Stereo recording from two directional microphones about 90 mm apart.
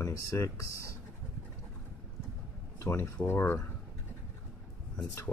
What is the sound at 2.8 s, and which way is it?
Speech, 30° left (ahead or behind).